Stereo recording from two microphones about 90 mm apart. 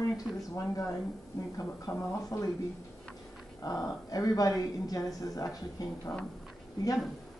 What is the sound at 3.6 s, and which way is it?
Speech, 40° left (ahead or behind).